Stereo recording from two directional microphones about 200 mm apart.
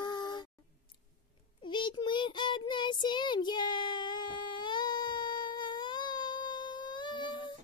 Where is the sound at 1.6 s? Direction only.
25° left (ahead or behind).